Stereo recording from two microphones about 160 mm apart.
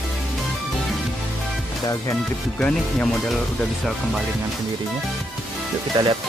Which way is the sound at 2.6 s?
10° left (ahead or behind).